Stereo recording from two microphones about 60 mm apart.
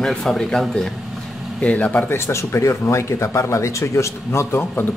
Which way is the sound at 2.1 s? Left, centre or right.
Left.